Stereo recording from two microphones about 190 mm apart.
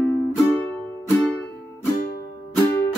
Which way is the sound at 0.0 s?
10° left (ahead or behind).